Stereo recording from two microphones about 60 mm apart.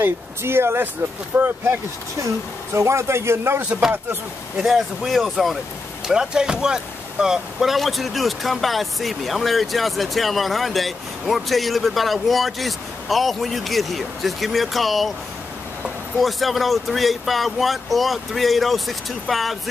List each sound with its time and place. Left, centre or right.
0.0 s speech: right
2.2 s speech: right
4.6 s speech: centre